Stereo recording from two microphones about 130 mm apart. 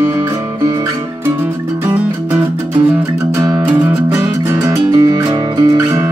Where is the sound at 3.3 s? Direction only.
25° right (ahead or behind).